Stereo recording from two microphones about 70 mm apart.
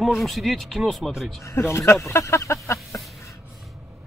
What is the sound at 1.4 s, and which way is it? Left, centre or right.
Speech, left.